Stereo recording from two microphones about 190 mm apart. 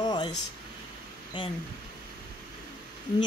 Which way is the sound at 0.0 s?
25° left (ahead or behind).